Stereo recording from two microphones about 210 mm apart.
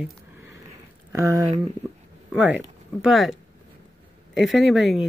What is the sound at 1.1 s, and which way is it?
Speech, 15° right (ahead or behind).